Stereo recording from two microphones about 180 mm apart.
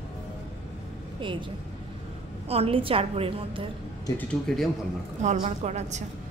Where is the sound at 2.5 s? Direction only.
35° right (ahead or behind).